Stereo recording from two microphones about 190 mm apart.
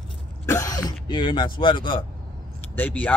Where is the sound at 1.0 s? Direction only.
25° left (ahead or behind).